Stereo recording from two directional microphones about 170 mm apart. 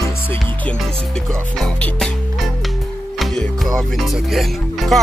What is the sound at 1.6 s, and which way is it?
Music, centre (ahead or behind).